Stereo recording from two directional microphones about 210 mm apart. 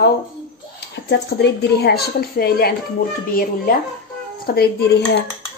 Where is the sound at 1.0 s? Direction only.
50° left (ahead or behind).